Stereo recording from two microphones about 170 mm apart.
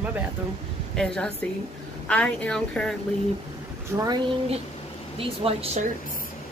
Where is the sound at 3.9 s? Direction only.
10° right (ahead or behind).